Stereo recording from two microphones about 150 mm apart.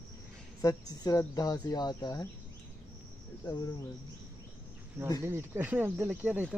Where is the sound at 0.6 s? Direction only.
25° left (ahead or behind).